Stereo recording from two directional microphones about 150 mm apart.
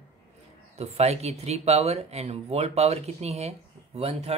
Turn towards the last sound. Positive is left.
turn(degrees=-40)  # may be behind; listen again after turning